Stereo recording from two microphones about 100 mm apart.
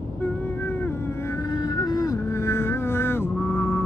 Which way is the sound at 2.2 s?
30° left (ahead or behind).